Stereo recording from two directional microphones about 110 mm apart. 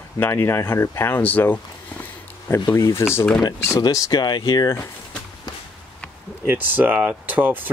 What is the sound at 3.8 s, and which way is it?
Speech, 30° left (ahead or behind).